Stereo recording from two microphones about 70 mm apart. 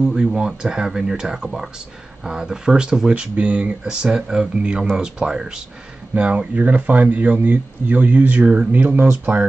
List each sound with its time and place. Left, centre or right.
0.0 s speech: centre; by 9.5 s right